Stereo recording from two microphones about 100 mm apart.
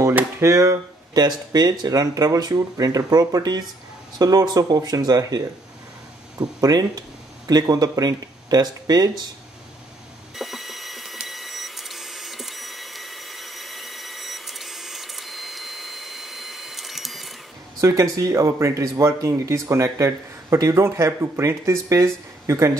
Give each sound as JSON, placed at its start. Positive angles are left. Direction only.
{"t": 0.1, "sound": "speech", "side_deg": -30}
{"t": 10.3, "sound": "printer", "side_deg": 0}
{"t": 17.7, "sound": "speech", "side_deg": -35}